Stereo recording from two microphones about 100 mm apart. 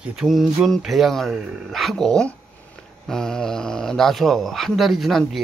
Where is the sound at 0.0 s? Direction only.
5° right (ahead or behind).